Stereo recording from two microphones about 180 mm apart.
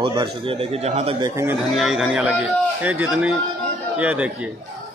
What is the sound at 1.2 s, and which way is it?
Speech, 15° right (ahead or behind).